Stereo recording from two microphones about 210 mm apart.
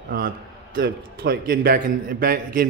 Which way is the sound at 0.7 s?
45° right (ahead or behind).